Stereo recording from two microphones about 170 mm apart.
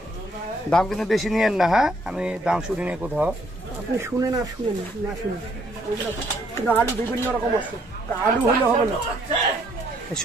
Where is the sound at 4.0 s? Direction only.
20° right (ahead or behind).